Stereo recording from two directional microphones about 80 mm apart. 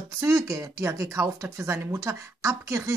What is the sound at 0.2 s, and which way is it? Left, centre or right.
A woman's voice, right.